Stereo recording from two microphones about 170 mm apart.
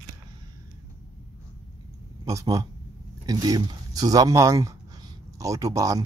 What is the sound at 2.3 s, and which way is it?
Speech, 20° right (ahead or behind).